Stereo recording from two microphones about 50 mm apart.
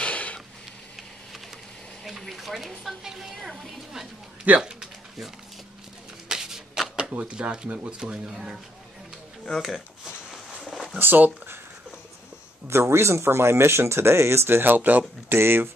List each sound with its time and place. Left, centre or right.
0.0 s sniff: left
2.0 s speech: centre
4.6 s speech: centre
6.2 s shuffling cards: centre
7.0 s a sound: right
7.2 s speech: centre
8.0 s speech: centre
9.5 s speech: centre
10.3 s a sound: centre
11.0 s speech: right
12.6 s speech: right
15.3 s speech: right